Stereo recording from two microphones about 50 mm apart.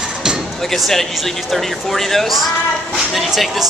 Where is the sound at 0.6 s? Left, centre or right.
Centre.